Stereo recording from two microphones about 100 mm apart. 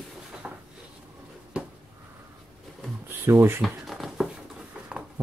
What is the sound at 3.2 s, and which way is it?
Speech, 25° right (ahead or behind).